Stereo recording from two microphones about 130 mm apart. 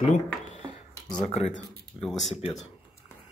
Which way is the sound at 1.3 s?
55° left (ahead or behind).